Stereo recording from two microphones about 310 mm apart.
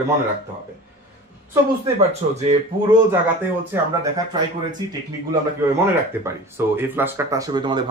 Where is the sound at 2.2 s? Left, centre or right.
Right.